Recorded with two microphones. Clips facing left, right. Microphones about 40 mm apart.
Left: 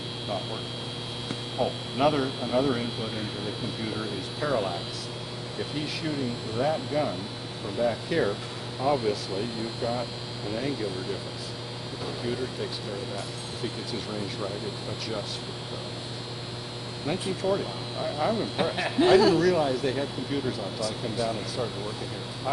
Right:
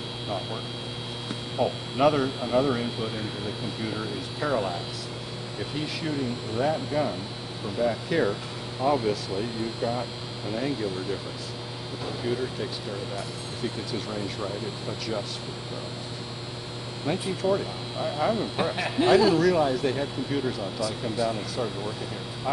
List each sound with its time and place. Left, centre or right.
1.6 s speech: centre
4.4 s speech: centre
6.0 s speech: centre
17.0 s speech: centre
18.3 s speech: centre
20.8 s speech: centre